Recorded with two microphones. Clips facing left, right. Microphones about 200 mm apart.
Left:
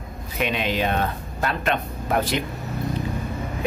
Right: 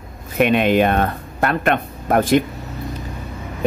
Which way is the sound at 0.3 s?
55° right (ahead or behind).